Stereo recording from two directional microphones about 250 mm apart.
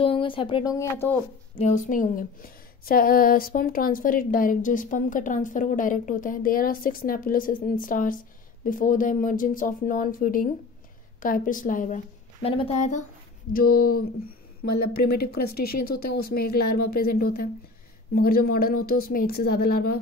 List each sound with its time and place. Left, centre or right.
0.0 s speech: left
1.6 s a woman's voice: left
15.0 s speech: left
15.7 s a woman's voice: left
16.0 s speech: left
17.0 s a woman's voice: left